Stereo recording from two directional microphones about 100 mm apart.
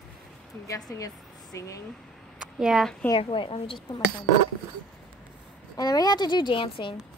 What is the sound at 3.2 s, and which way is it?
Speech, 60° left (ahead or behind).